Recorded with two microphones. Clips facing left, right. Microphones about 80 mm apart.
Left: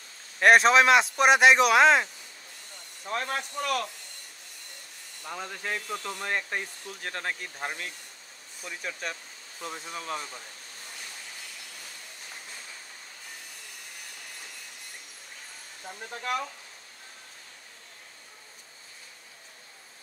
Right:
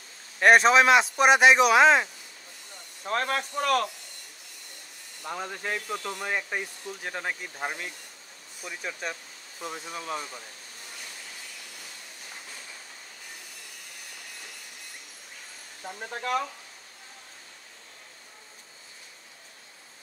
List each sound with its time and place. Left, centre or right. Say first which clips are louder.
0.4 s speech: right 1 dB; centre
3.1 s speech: right 3 dB; right
5.2 s speech: right 2 dB; centre